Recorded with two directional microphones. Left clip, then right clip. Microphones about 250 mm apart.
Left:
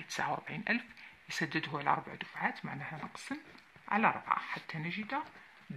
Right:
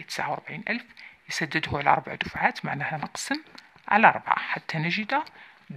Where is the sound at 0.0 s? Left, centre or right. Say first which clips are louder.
Right 6 dB; right.